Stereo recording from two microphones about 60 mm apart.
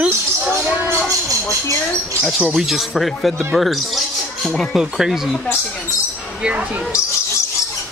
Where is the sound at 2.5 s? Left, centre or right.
Centre.